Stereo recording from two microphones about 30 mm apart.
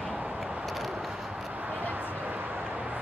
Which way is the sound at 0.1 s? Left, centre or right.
Right.